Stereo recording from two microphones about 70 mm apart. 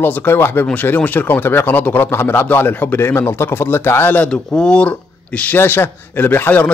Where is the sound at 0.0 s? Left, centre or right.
Left.